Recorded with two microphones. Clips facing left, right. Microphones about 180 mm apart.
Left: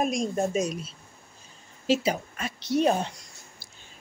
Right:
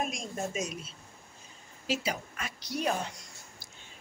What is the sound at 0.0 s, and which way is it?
Speech, 40° left (ahead or behind).